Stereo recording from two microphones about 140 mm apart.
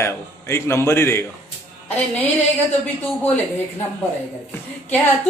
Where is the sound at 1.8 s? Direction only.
10° left (ahead or behind).